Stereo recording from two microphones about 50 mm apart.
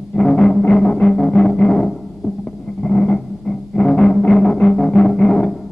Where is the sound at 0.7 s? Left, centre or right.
Centre.